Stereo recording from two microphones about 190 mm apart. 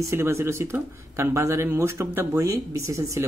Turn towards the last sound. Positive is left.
turn(degrees=-15)  # may be behind; listen again after turning